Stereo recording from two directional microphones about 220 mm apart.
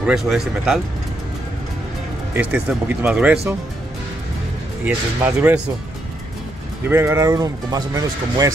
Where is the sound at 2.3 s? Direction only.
5° right (ahead or behind).